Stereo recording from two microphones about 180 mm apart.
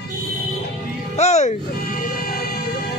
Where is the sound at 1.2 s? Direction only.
40° left (ahead or behind).